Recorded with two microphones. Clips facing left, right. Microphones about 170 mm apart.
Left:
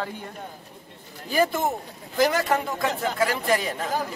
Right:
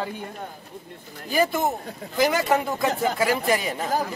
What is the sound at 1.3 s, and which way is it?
A man's voice, 5° right (ahead or behind).